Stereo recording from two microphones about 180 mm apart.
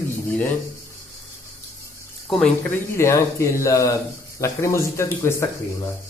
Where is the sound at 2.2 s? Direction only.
Centre (ahead or behind).